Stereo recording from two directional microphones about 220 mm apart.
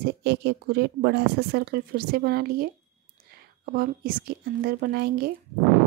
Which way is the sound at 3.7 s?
40° right (ahead or behind).